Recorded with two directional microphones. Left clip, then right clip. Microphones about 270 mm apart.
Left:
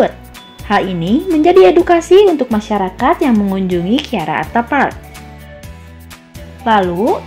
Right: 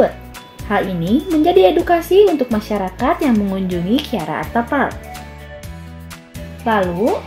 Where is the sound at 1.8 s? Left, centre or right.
Left.